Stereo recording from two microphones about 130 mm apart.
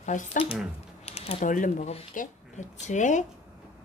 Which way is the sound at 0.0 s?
75° left (ahead or behind).